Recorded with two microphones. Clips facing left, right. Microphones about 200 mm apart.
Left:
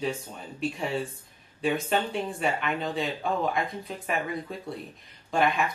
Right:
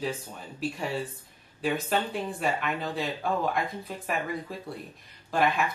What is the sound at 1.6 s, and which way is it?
Speech, 5° right (ahead or behind).